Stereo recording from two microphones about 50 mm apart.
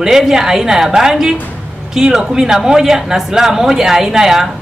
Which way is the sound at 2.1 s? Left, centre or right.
Centre.